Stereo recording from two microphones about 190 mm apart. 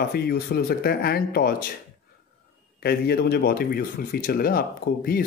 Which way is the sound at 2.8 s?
55° left (ahead or behind).